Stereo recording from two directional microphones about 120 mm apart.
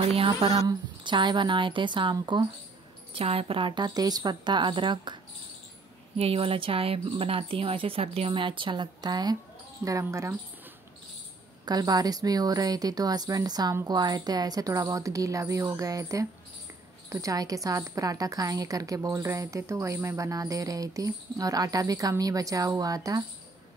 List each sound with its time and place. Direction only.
0.0 s speech: 50° right (ahead or behind)
0.5 s a woman's voice: 30° right (ahead or behind)
3.2 s a woman's voice: 55° right (ahead or behind)
6.1 s a woman's voice: 50° right (ahead or behind); by 10.3 s 25° right (ahead or behind)
11.6 s a woman's voice: 35° right (ahead or behind)